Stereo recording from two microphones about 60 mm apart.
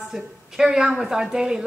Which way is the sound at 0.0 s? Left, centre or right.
Centre.